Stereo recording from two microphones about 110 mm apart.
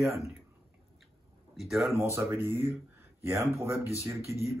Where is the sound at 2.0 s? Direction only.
25° right (ahead or behind).